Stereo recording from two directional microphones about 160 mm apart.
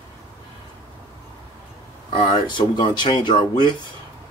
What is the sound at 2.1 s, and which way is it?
Speech, 30° left (ahead or behind).